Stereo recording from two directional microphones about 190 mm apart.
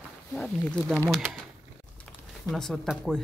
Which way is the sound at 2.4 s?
Centre (ahead or behind).